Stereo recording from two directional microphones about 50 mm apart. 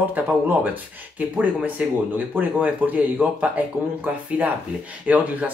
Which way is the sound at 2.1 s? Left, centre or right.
Right.